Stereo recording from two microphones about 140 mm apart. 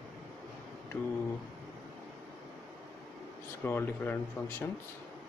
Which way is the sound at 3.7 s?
15° left (ahead or behind).